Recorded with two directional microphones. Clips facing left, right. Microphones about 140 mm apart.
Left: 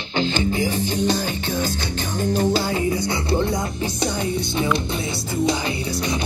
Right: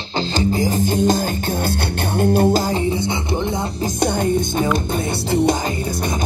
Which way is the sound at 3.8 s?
50° right (ahead or behind).